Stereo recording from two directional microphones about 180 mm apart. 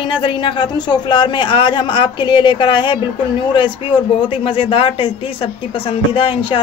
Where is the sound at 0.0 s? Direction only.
25° left (ahead or behind).